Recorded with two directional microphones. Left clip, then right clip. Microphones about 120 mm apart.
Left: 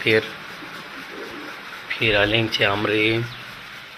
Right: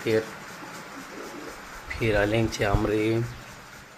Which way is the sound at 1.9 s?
25° right (ahead or behind).